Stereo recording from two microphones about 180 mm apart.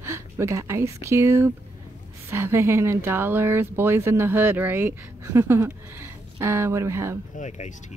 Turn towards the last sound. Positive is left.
turn(degrees=45)  # may be behind; listen again after turning